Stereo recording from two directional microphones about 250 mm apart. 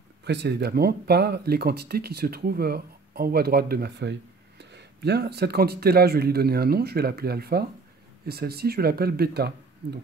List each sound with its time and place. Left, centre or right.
0.2 s speech: right